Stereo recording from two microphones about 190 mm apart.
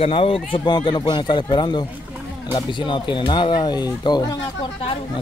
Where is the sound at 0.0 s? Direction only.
30° left (ahead or behind).